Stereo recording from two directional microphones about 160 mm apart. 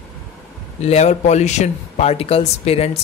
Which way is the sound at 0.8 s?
45° left (ahead or behind).